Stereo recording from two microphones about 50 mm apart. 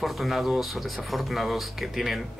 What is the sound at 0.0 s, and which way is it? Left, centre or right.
Speech, centre.